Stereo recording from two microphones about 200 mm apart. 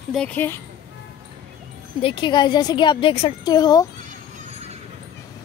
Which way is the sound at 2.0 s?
25° left (ahead or behind).